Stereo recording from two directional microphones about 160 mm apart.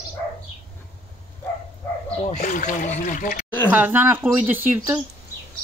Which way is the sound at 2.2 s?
50° left (ahead or behind).